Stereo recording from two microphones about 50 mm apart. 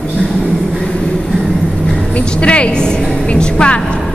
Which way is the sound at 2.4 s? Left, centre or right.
Left.